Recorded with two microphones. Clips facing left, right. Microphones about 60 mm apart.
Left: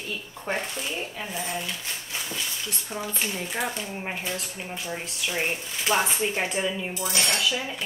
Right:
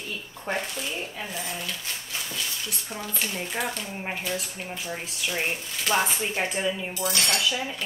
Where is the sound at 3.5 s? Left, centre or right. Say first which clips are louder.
Left 1 dB; centre.